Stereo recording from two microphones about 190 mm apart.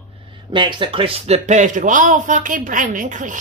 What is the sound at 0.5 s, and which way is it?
A man's voice, 25° right (ahead or behind).